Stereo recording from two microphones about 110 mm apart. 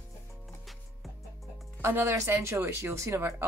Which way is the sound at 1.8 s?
20° right (ahead or behind).